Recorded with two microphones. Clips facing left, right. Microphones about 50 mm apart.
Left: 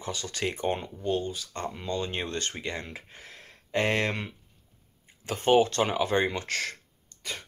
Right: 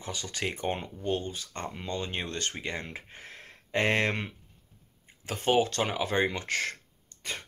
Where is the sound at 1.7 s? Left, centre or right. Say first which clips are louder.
Left 3 dB; right.